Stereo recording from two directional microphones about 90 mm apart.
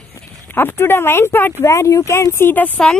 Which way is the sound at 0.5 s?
25° left (ahead or behind).